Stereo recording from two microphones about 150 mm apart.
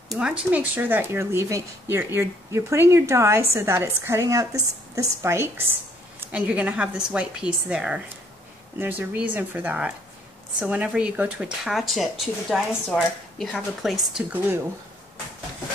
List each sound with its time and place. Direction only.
0.1 s speech: 5° right (ahead or behind)